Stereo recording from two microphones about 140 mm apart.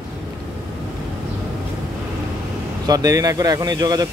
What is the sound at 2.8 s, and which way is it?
Speech, 25° right (ahead or behind).